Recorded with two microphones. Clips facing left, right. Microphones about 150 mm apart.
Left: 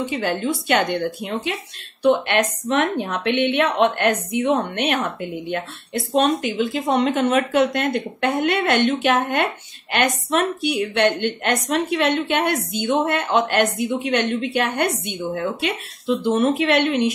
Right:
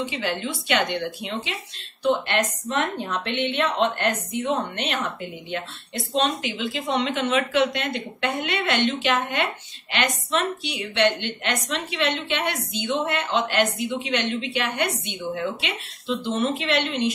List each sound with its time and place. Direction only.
0.0 s a woman's voice: 50° left (ahead or behind)
16.2 s a woman's voice: 55° left (ahead or behind)